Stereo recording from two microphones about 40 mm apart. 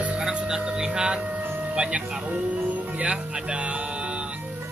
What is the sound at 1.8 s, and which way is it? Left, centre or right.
Speech, right.